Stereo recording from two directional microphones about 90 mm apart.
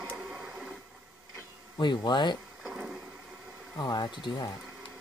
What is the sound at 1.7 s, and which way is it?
Speech, 55° left (ahead or behind).